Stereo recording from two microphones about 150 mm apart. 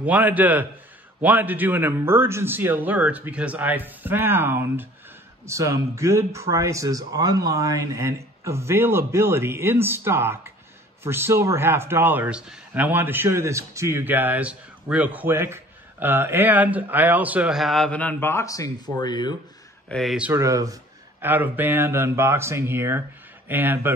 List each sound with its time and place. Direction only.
0.0 s a man's voice: 10° right (ahead or behind); by 19.3 s 30° left (ahead or behind)
19.9 s speech: centre (ahead or behind)
20.2 s a man's voice: 20° right (ahead or behind)